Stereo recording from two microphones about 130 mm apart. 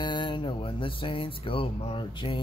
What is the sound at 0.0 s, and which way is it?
Speech, 35° left (ahead or behind).